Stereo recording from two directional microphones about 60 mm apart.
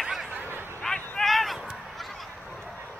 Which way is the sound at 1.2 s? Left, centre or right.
Centre.